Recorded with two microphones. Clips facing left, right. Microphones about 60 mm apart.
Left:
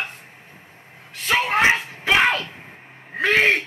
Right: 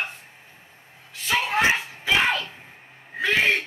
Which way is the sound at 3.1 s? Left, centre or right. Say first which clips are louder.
Left 4 dB; left.